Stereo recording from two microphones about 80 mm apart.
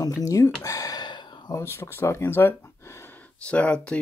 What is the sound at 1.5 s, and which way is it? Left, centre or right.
Speech, left.